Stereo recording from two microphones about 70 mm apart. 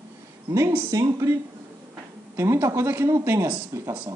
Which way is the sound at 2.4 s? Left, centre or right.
Right.